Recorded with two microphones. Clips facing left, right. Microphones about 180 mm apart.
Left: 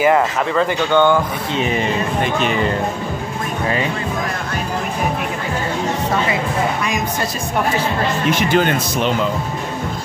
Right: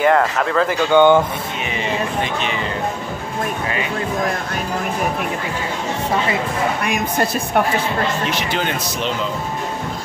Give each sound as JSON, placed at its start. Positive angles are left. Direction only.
{"t": 0.0, "sound": "speech", "side_deg": 5}
{"t": 0.9, "sound": "speech", "side_deg": -20}
{"t": 8.3, "sound": "speech", "side_deg": 50}